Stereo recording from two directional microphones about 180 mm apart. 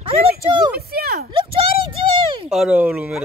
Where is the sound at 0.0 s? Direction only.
30° right (ahead or behind).